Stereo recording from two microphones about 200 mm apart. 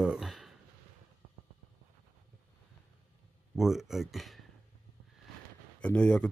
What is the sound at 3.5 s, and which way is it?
Speech, centre (ahead or behind).